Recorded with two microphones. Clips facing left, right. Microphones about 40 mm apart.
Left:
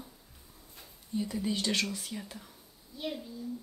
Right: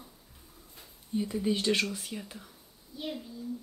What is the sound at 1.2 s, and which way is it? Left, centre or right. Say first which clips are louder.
Speech: right 3 dB; right.